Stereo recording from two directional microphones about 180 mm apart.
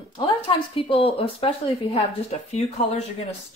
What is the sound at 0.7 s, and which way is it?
Speech, 30° left (ahead or behind).